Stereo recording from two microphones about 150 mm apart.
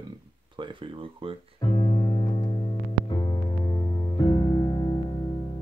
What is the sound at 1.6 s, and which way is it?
Music, 30° left (ahead or behind).